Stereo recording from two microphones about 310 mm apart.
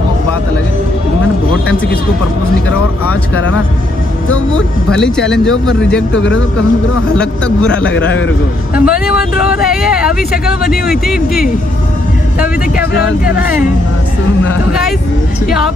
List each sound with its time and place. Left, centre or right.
4.9 s speech: centre
6.1 s speech: left
7.2 s speech: centre